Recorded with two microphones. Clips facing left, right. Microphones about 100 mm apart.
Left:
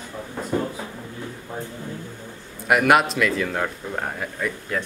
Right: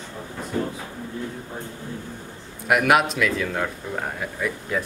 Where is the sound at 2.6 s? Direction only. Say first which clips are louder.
Left 1 dB; centre (ahead or behind).